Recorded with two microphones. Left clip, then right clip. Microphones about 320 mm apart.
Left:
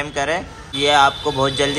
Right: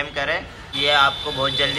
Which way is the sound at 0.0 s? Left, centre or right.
Centre.